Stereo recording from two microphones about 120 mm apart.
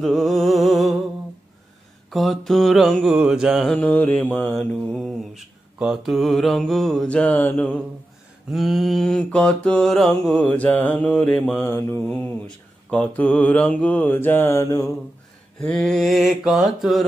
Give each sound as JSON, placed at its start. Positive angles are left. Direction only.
{"t": 0.0, "sound": "music", "side_deg": 0}
{"t": 2.0, "sound": "mantra", "side_deg": 0}
{"t": 3.7, "sound": "mantra", "side_deg": 10}
{"t": 4.6, "sound": "mantra", "side_deg": 0}
{"t": 8.5, "sound": "mantra", "side_deg": 0}
{"t": 15.6, "sound": "mantra", "side_deg": 5}